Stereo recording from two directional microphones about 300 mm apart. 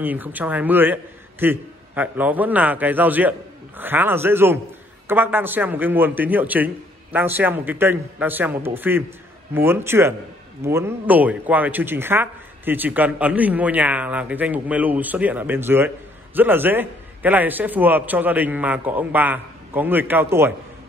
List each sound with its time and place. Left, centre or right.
0.0 s a man's voice: centre